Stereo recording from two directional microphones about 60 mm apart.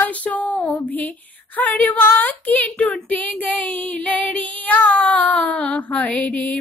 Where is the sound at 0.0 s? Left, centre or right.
Left.